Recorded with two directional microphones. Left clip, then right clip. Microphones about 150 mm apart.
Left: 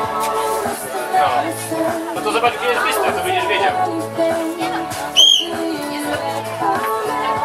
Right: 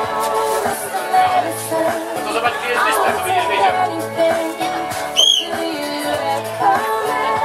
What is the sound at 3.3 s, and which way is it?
Music, 35° right (ahead or behind).